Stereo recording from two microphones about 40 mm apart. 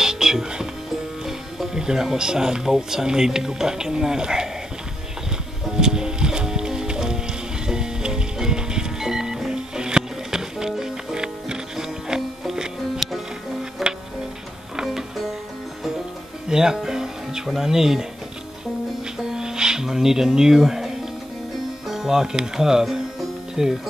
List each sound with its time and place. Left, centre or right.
0.0 s music: centre
1.2 s speech: centre
5.7 s music: centre
13.0 s music: centre
16.4 s music: centre
19.1 s music: centre
21.8 s speech: centre